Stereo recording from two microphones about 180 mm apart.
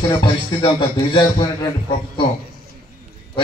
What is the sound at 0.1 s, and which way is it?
Music, 25° left (ahead or behind).